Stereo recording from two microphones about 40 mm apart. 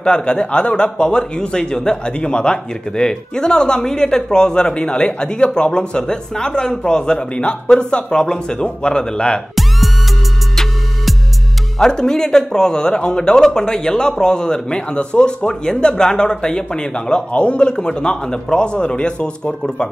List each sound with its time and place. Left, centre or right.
0.0 s speech: left
10.5 s music: centre
11.8 s speech: centre